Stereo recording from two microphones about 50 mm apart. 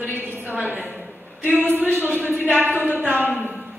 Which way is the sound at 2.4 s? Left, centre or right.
Right.